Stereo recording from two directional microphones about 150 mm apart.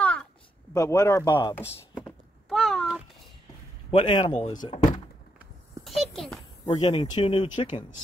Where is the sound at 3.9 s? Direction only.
35° left (ahead or behind).